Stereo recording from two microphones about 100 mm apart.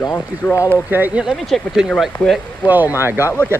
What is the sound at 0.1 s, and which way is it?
Speech, 20° left (ahead or behind).